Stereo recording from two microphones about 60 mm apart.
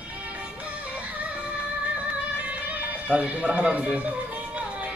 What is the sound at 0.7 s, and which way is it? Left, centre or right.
Music, right.